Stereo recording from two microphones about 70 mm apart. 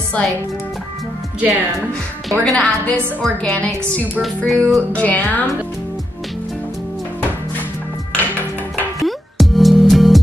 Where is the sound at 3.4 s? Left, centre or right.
Centre.